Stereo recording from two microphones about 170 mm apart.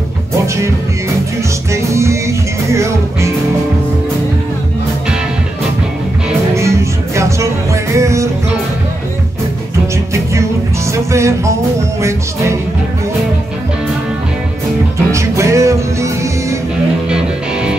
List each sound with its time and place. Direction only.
1.7 s music: 15° right (ahead or behind)
6.5 s music: 15° right (ahead or behind)
10.9 s music: 15° right (ahead or behind)
15.0 s music: 15° right (ahead or behind)
17.1 s music: 5° right (ahead or behind)